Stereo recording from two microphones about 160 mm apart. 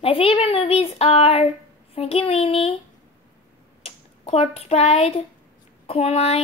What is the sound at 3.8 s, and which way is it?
A woman's voice, 40° left (ahead or behind).